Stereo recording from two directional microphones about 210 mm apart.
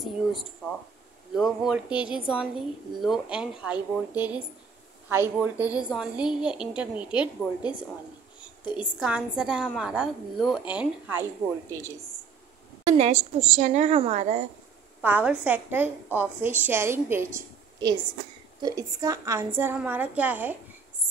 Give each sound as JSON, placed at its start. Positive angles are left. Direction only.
{"t": 0.0, "sound": "a woman's voice", "side_deg": 0}
{"t": 12.8, "sound": "a woman's voice", "side_deg": -30}
{"t": 15.0, "sound": "a woman's voice", "side_deg": -10}
{"t": 18.6, "sound": "a woman's voice", "side_deg": -15}